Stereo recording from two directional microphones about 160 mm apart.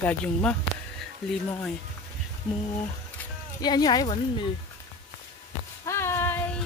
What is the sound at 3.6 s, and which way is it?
Speech, 25° left (ahead or behind).